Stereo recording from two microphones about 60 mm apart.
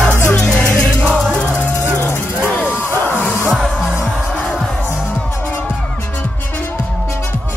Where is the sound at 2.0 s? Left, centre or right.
Left.